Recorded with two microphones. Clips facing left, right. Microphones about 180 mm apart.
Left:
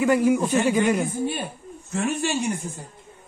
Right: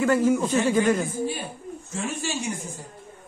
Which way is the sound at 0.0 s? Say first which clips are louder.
Left 1 dB; 15° left (ahead or behind).